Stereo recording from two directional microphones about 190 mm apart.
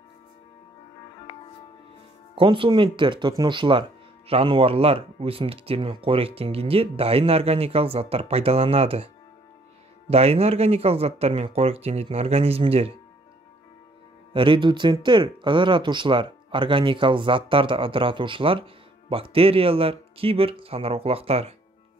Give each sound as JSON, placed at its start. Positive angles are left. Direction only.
{"t": 2.3, "sound": "speech", "side_deg": -25}
{"t": 14.3, "sound": "speech", "side_deg": -25}